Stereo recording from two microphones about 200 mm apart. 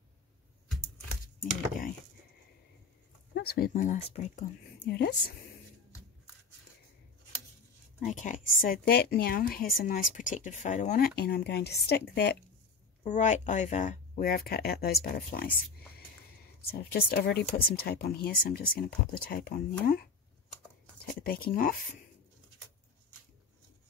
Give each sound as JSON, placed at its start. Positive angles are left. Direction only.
{"t": 3.3, "sound": "speech", "side_deg": 50}
{"t": 4.8, "sound": "a woman's voice", "side_deg": 55}
{"t": 8.0, "sound": "a woman's voice", "side_deg": 40}
{"t": 13.0, "sound": "a woman's voice", "side_deg": 40}
{"t": 16.7, "sound": "a woman's voice", "side_deg": 50}
{"t": 21.1, "sound": "a woman's voice", "side_deg": 45}